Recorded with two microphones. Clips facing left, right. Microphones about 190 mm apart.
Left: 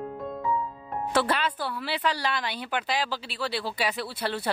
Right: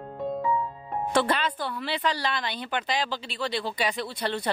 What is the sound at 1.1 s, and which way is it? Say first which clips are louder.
Speech: right 1 dB; 5° left (ahead or behind).